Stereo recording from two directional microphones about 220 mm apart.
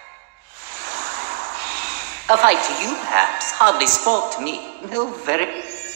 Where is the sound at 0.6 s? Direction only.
40° right (ahead or behind).